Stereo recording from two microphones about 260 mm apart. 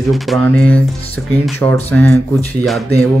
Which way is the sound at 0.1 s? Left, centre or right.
Centre.